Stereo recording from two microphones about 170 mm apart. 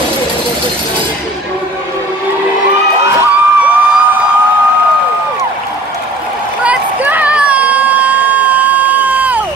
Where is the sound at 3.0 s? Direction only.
15° right (ahead or behind).